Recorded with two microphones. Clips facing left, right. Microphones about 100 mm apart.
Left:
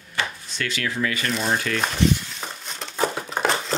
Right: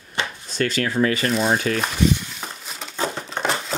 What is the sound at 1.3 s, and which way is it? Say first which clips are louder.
Speech: right 4 dB; centre (ahead or behind).